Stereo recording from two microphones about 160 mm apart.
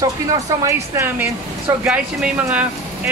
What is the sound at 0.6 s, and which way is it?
A man's voice, 20° right (ahead or behind).